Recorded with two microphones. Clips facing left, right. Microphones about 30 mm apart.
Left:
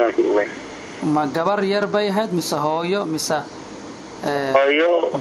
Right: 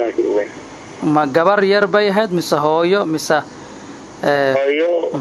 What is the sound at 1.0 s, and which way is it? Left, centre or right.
Speech, right.